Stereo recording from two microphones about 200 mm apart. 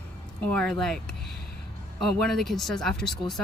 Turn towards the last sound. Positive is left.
turn(degrees=0)  # may be behind; listen again after turning